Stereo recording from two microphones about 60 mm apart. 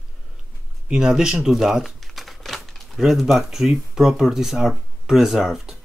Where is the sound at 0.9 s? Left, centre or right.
Centre.